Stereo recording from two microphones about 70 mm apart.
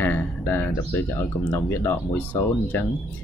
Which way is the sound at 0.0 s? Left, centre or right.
Left.